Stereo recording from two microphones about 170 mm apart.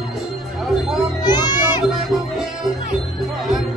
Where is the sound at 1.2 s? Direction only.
25° left (ahead or behind).